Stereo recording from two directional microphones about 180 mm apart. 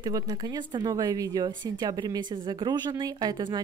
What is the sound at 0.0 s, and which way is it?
A woman's voice, 20° right (ahead or behind).